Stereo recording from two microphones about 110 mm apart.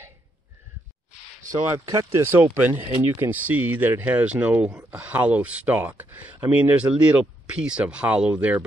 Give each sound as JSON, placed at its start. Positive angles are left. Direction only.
{"t": 1.5, "sound": "speech", "side_deg": -30}